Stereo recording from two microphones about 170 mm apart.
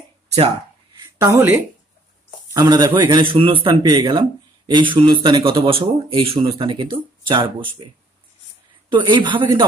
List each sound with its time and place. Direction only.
1.2 s speech: 15° right (ahead or behind)
2.5 s speech: 20° right (ahead or behind)